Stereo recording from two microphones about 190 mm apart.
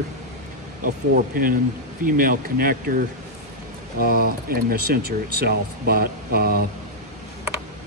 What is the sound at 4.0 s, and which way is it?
Speech, 55° right (ahead or behind).